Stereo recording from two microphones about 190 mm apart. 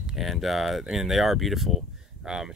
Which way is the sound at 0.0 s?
Centre (ahead or behind).